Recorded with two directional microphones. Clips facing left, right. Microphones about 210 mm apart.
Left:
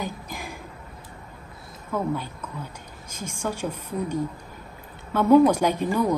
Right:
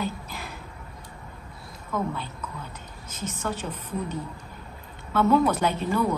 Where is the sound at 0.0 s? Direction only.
15° left (ahead or behind).